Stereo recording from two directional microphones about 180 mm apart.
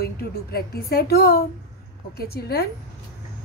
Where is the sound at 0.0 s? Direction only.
60° left (ahead or behind).